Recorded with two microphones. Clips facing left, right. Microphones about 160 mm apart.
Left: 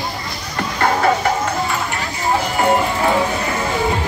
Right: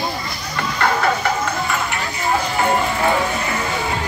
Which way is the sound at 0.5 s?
35° left (ahead or behind).